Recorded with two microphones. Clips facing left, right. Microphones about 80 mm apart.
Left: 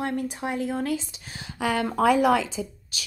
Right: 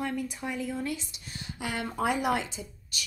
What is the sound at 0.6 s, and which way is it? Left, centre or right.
Speech, left.